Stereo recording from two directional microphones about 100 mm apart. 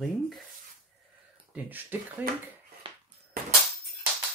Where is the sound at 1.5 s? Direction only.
15° right (ahead or behind).